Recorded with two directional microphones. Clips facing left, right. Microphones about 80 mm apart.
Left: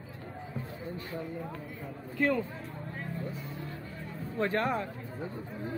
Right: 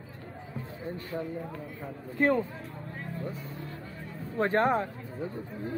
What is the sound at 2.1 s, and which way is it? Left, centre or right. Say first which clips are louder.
Speech: right 3 dB; right.